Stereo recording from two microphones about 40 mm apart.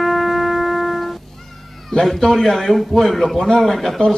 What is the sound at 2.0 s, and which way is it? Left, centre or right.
A man's voice, centre.